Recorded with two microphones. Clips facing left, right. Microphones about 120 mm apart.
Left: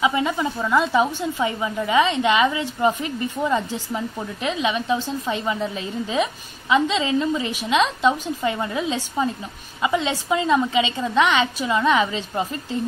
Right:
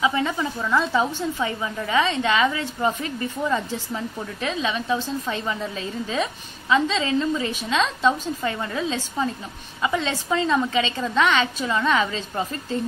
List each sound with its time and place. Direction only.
0.0 s a woman's voice: 15° left (ahead or behind)